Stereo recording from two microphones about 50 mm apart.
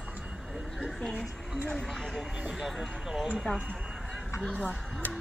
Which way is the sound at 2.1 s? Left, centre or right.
Centre.